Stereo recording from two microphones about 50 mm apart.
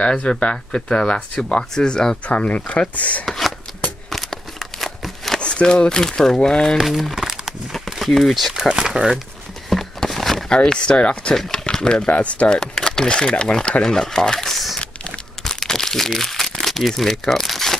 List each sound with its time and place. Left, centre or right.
0.0 s speech: centre
2.2 s speech: left
3.3 s a sound: centre
5.4 s speech: left
6.8 s crumpling: centre
7.7 s speech: centre
8.6 s speech: centre
9.7 s a sound: centre
10.5 s speech: centre
11.3 s speech: centre
12.1 s speech: left
12.5 s speech: centre
15.4 s crumpling: centre